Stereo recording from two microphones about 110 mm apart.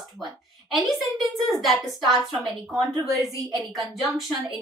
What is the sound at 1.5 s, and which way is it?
A woman's voice, centre (ahead or behind).